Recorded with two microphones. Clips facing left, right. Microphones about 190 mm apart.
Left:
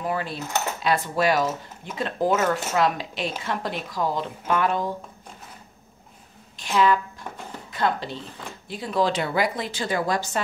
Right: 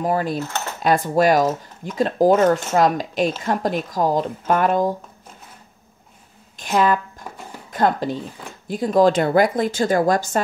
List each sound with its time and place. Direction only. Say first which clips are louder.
0.0 s speech: right 7 dB; 40° right (ahead or behind)
6.6 s speech: right 2 dB; 50° right (ahead or behind)